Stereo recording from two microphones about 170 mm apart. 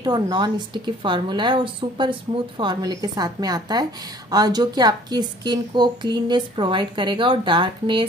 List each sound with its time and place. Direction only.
0.0 s a woman's voice: 25° right (ahead or behind)